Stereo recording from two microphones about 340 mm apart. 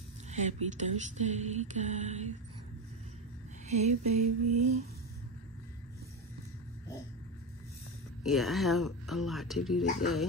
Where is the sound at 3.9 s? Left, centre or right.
Right.